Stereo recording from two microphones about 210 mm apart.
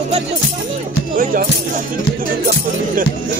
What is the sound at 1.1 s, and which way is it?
Music, 40° right (ahead or behind).